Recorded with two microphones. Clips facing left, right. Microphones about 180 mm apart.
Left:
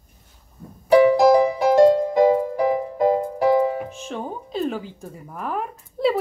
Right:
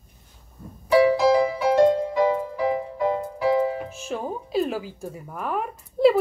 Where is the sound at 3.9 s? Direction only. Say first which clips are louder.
Right 1 dB; 5° right (ahead or behind).